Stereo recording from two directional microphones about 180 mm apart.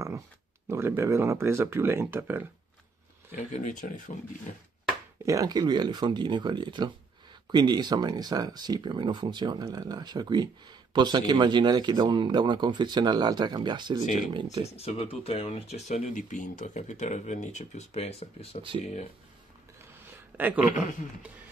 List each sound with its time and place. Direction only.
0.7 s speech: 15° right (ahead or behind)
3.3 s speech: 40° left (ahead or behind)
5.2 s speech: 20° right (ahead or behind)
14.6 s speech: 35° left (ahead or behind)
20.1 s a sound: 10° right (ahead or behind)